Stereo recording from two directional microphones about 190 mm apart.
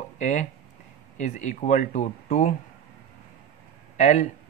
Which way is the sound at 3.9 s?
35° left (ahead or behind).